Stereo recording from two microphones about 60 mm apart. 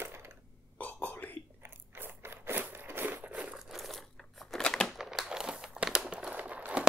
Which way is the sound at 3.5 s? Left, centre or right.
Centre.